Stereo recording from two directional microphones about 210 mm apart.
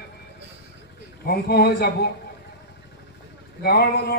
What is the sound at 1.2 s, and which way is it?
Speech, 45° left (ahead or behind).